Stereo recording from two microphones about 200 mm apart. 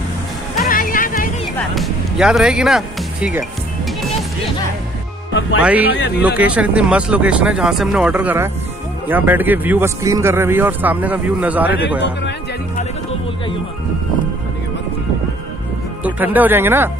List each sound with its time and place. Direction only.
0.7 s music: 45° left (ahead or behind)
1.8 s music: centre (ahead or behind)
5.6 s a man's voice: 5° right (ahead or behind)
12.0 s speech: 60° left (ahead or behind)
16.0 s a man's voice: 10° right (ahead or behind)